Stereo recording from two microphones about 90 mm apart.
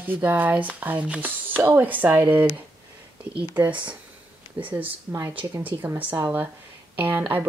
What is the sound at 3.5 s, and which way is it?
Speech, 15° right (ahead or behind).